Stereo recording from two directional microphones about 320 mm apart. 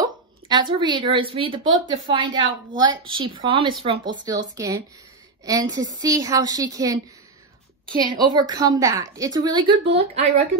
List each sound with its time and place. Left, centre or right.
0.0 s a woman's voice: centre
8.0 s a woman's voice: centre